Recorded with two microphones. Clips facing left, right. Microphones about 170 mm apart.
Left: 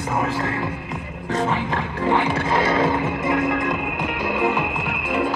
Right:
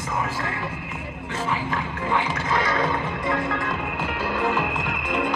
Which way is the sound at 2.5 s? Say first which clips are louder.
Left 4 dB; 25° left (ahead or behind).